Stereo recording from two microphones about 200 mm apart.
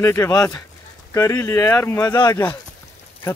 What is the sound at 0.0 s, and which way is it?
Speech, 15° left (ahead or behind).